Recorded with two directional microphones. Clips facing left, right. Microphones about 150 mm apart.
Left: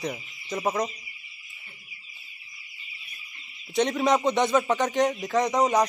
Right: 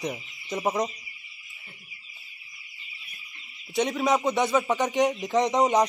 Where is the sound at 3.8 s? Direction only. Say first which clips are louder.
Left 1 dB; 5° right (ahead or behind).